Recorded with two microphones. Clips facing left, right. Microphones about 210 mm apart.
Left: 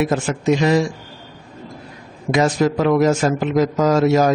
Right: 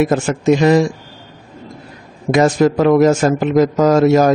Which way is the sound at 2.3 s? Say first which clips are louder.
Right 4 dB; 50° right (ahead or behind).